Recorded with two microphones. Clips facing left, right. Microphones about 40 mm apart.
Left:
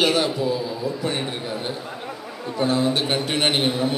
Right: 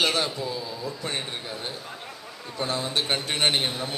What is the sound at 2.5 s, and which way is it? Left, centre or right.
A man's voice, left.